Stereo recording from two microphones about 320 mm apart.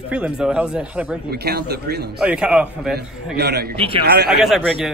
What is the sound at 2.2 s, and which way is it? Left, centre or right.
A man's voice, centre.